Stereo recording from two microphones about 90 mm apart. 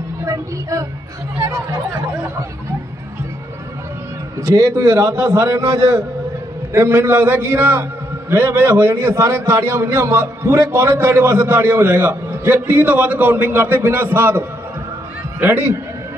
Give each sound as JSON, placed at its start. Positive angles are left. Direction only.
{"t": 0.2, "sound": "speech", "side_deg": -40}
{"t": 4.4, "sound": "a man's voice", "side_deg": -40}
{"t": 6.7, "sound": "a man's voice", "side_deg": -25}
{"t": 15.4, "sound": "a man's voice", "side_deg": -25}